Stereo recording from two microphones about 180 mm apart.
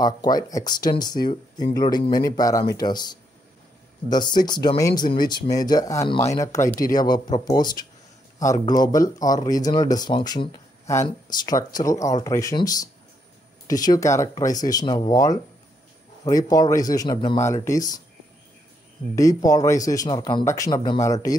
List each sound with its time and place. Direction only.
0.0 s speech: 20° left (ahead or behind)
19.1 s speech: 20° left (ahead or behind)